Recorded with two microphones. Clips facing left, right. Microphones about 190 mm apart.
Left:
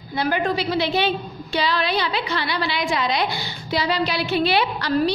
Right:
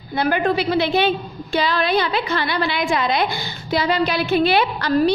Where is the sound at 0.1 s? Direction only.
55° right (ahead or behind).